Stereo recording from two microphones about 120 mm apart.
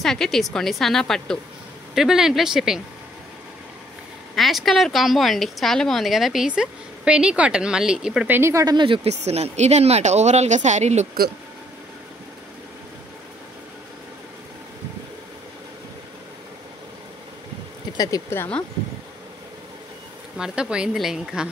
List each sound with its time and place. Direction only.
0.0 s a woman's voice: 5° left (ahead or behind)
4.4 s a woman's voice: centre (ahead or behind)
8.4 s speech: 20° right (ahead or behind)
8.6 s speech: 45° right (ahead or behind)
9.2 s speech: 65° right (ahead or behind)
17.9 s speech: 30° left (ahead or behind)
20.3 s a woman's voice: 5° right (ahead or behind)